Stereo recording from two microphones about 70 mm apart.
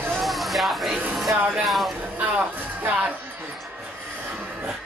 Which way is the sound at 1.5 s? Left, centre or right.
Centre.